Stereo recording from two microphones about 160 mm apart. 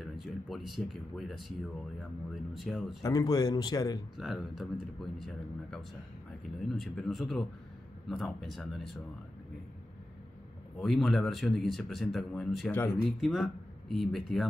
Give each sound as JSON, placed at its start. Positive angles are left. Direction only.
{"t": 0.0, "sound": "speech", "side_deg": 0}
{"t": 3.0, "sound": "a man's voice", "side_deg": 20}
{"t": 4.2, "sound": "speech", "side_deg": 0}
{"t": 10.8, "sound": "speech", "side_deg": 0}